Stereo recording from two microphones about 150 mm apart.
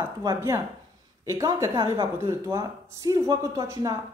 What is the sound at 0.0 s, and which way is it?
A woman's voice, 20° right (ahead or behind).